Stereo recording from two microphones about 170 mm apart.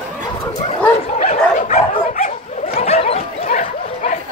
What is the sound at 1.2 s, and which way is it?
Dog, 50° left (ahead or behind).